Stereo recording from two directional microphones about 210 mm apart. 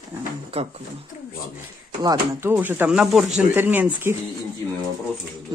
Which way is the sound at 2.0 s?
10° right (ahead or behind).